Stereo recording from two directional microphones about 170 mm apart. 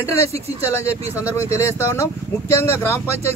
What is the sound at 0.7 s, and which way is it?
Speech, 15° left (ahead or behind).